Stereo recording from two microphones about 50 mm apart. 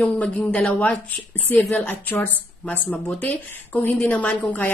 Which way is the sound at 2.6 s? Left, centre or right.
Left.